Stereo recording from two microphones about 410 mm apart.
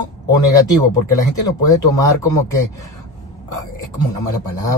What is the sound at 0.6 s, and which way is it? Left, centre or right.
Speech, centre.